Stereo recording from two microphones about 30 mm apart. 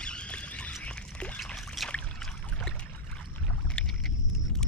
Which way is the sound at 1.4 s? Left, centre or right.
Centre.